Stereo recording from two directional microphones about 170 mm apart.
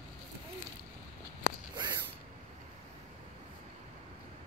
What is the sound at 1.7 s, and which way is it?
Snort, 25° right (ahead or behind).